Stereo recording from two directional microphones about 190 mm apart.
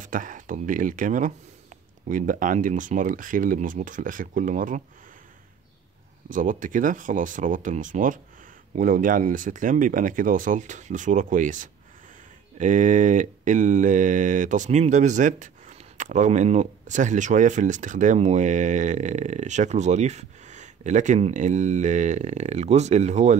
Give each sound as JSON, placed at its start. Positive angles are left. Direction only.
{"t": 0.0, "sound": "speech", "side_deg": -45}
{"t": 6.3, "sound": "speech", "side_deg": -45}
{"t": 12.5, "sound": "mantra", "side_deg": -40}